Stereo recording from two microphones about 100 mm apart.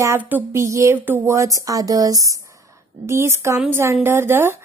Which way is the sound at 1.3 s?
35° right (ahead or behind).